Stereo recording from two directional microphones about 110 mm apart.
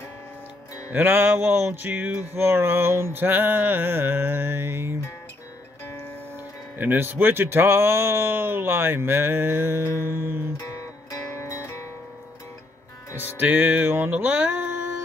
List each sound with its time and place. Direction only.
0.9 s mantra: 20° right (ahead or behind)
6.8 s mantra: 20° right (ahead or behind)
10.6 s music: 25° left (ahead or behind)
13.4 s music: 15° right (ahead or behind)